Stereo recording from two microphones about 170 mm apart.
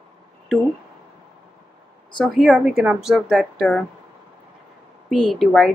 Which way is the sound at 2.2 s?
5° left (ahead or behind).